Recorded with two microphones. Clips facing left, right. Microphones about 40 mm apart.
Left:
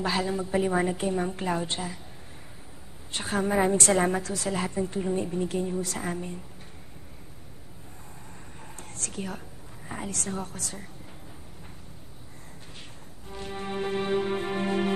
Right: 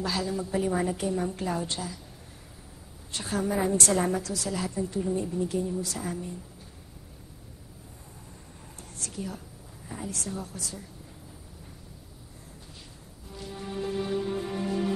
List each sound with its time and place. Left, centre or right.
0.0 s a woman's voice: left
3.1 s a woman's voice: left
8.7 s whispering: left
9.8 s a woman's voice: left
13.3 s music: left